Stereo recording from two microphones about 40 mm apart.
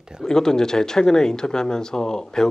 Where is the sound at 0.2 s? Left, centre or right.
Centre.